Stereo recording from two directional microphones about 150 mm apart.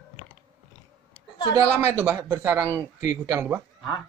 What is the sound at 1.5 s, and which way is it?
Speech, 15° right (ahead or behind).